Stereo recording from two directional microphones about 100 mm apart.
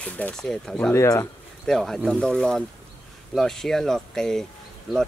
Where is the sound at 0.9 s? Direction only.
35° left (ahead or behind).